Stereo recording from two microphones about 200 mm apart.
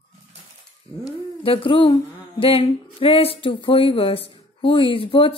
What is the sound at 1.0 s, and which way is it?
Speech, 25° left (ahead or behind).